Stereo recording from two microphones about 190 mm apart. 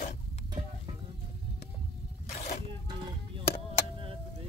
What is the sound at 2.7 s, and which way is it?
Music, 25° right (ahead or behind).